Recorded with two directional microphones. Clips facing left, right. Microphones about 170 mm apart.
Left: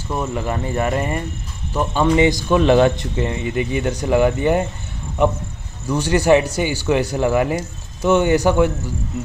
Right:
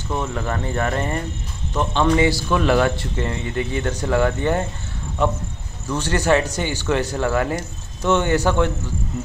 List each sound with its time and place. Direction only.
0.2 s speech: 15° left (ahead or behind)
2.0 s speech: 20° left (ahead or behind)